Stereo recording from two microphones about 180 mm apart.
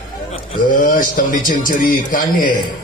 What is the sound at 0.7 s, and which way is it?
Speech, 50° left (ahead or behind).